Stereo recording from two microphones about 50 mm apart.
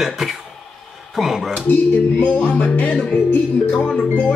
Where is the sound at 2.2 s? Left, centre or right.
Left.